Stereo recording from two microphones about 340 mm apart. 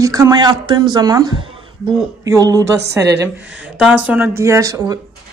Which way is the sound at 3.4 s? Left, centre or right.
Right.